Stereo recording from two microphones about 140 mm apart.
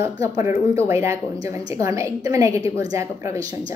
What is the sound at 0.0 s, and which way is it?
A woman's voice, 20° right (ahead or behind).